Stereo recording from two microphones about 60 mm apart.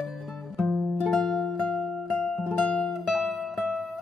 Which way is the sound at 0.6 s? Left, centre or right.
Centre.